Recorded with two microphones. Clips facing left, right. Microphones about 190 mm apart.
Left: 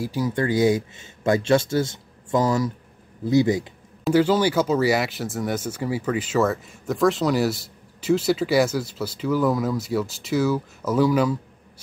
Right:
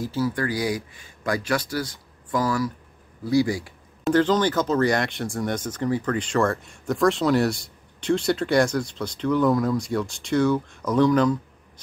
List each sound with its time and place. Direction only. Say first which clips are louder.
0.0 s speech: left 1 dB; 15° left (ahead or behind)
4.0 s speech: left 1 dB; 10° left (ahead or behind)